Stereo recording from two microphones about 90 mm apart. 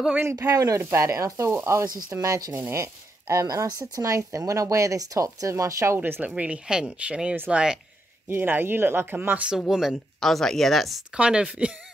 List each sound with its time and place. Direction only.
0.2 s speech: 30° right (ahead or behind)
2.5 s speech: 25° right (ahead or behind)
2.8 s speech: 35° right (ahead or behind)
5.9 s speech: 20° right (ahead or behind)
8.3 s speech: 20° right (ahead or behind)
9.7 s speech: 5° right (ahead or behind)
11.1 s speech: 10° right (ahead or behind)